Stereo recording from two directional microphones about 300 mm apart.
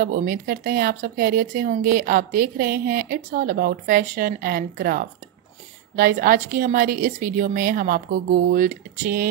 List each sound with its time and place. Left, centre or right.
0.0 s speech: right